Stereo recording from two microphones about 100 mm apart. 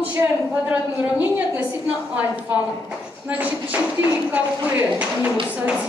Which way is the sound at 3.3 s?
15° right (ahead or behind).